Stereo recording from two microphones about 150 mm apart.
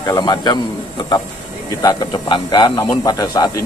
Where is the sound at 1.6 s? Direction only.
25° left (ahead or behind).